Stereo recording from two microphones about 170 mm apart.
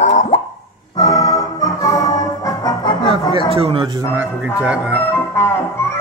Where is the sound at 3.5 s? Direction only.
35° right (ahead or behind).